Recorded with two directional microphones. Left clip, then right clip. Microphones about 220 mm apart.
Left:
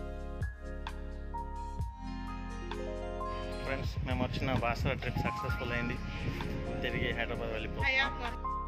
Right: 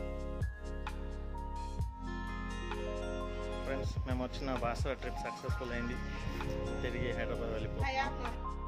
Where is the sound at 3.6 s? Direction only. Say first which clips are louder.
Left 2 dB; 5° right (ahead or behind).